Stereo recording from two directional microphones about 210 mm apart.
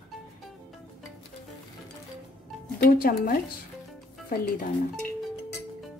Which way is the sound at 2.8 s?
45° left (ahead or behind).